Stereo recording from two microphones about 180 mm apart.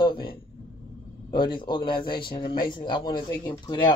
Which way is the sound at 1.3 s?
25° left (ahead or behind).